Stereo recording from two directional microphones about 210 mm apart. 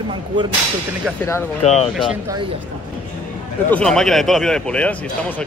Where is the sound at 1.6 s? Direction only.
30° left (ahead or behind).